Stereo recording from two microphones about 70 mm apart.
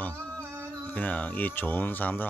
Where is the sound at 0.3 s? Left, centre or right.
Right.